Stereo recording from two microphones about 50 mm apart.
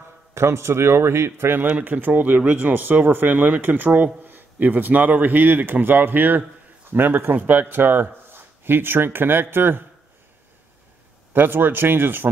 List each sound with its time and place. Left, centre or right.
0.3 s a man's voice: right
1.7 s speech: right
2.0 s speech: right
11.3 s speech: right